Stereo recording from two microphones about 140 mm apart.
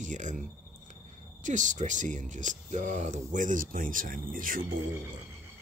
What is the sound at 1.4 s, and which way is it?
Speech, 60° right (ahead or behind).